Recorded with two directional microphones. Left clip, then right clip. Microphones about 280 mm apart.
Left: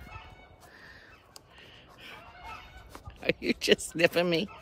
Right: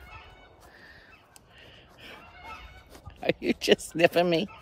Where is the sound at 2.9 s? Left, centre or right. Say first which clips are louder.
Right 2 dB; centre.